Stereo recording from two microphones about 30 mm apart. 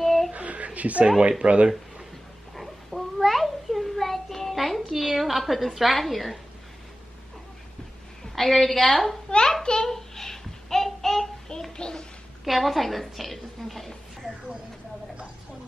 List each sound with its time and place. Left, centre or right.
0.0 s a sound: centre
0.3 s a sound: right
0.7 s speech: right
2.5 s a sound: centre
5.0 s a woman's voice: centre
8.4 s a woman's voice: centre
9.6 s a child's voice: left
9.8 s child singing: centre
11.7 s a child's voice: left
12.4 s a woman's voice: centre